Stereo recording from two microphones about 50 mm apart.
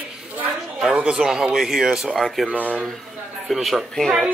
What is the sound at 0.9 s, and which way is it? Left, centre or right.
Speech, centre.